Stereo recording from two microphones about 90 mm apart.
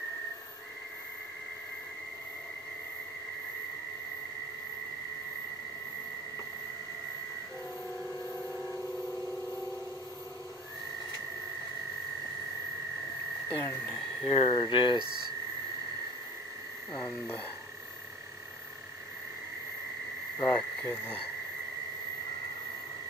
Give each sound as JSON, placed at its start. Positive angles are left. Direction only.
{"t": 13.5, "sound": "speech", "side_deg": 25}
{"t": 14.2, "sound": "speech", "side_deg": 80}
{"t": 20.3, "sound": "frog", "side_deg": 45}
{"t": 20.9, "sound": "speech", "side_deg": 25}